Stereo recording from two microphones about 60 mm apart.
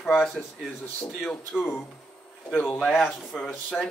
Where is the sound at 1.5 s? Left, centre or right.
Centre.